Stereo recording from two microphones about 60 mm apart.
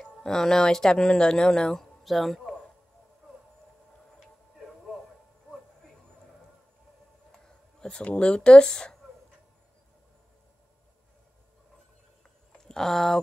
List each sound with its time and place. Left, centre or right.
0.0 s speech: centre
7.4 s speech: centre
12.5 s speech: centre